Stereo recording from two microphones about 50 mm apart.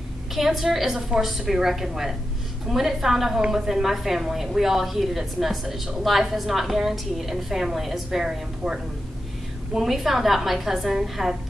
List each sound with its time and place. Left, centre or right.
0.3 s a woman's voice: centre
3.3 s a woman's voice: centre
3.6 s a woman's voice: centre
9.8 s a woman's voice: centre